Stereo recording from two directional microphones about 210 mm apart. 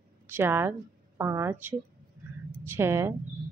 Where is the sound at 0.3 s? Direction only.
10° right (ahead or behind).